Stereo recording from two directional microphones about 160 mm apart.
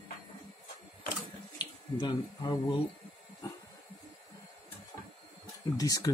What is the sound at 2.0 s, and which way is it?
Speech, 30° left (ahead or behind).